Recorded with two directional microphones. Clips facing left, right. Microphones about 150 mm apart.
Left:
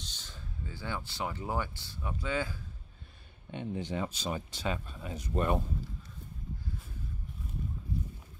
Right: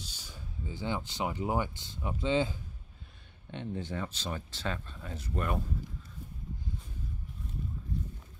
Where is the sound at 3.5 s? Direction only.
15° left (ahead or behind).